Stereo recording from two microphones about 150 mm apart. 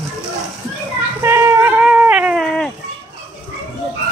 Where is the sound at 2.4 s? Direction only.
5° left (ahead or behind).